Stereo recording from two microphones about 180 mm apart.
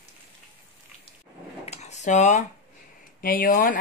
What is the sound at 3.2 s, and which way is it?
Speech, 55° left (ahead or behind).